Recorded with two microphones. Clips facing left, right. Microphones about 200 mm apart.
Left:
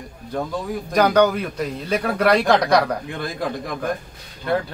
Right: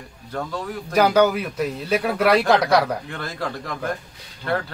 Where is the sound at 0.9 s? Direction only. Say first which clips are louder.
Even; 5° right (ahead or behind).